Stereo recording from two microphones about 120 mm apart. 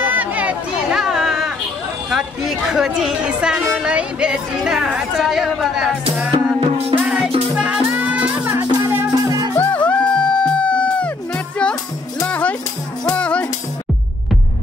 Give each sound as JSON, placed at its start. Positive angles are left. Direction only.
{"t": 0.0, "sound": "a sound", "side_deg": -15}
{"t": 2.0, "sound": "speech", "side_deg": -5}
{"t": 6.3, "sound": "music", "side_deg": -50}
{"t": 7.5, "sound": "music", "side_deg": -10}
{"t": 9.6, "sound": "music", "side_deg": 10}
{"t": 12.3, "sound": "music", "side_deg": 10}